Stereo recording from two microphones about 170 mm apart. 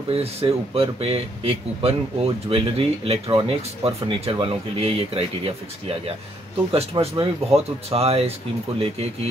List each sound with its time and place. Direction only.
0.1 s speech: 35° right (ahead or behind)